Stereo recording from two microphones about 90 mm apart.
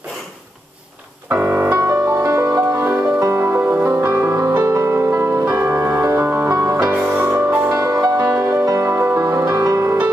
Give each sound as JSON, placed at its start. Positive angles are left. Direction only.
{"t": 1.3, "sound": "music", "side_deg": -25}
{"t": 6.9, "sound": "music", "side_deg": -20}
{"t": 7.7, "sound": "music", "side_deg": -40}